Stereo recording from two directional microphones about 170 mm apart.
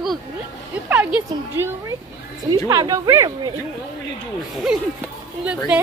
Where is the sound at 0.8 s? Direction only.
15° right (ahead or behind).